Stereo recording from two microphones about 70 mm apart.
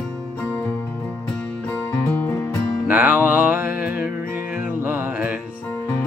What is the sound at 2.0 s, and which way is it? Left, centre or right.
Music, left.